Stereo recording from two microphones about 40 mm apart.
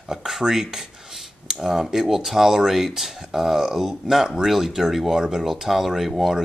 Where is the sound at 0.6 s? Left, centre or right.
Centre.